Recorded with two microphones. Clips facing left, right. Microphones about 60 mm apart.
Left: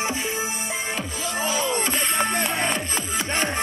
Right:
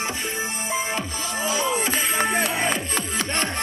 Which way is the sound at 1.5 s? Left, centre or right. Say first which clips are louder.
Right 2 dB; centre.